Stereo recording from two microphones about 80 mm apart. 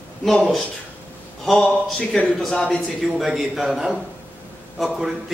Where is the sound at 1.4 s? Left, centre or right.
Centre.